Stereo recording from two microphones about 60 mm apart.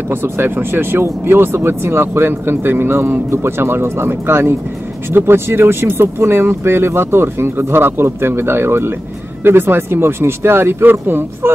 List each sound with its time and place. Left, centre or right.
0.1 s speech: right